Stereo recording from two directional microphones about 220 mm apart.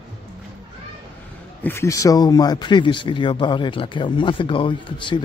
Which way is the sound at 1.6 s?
10° left (ahead or behind).